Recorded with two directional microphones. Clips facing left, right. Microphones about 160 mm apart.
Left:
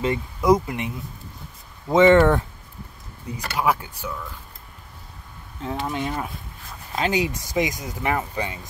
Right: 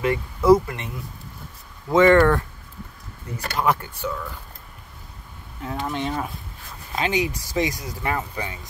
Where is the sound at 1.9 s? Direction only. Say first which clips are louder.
Left 1 dB; 20° left (ahead or behind).